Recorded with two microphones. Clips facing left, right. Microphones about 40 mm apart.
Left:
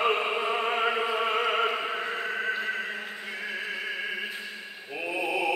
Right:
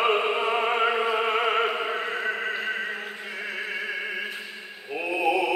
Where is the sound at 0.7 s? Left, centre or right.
Centre.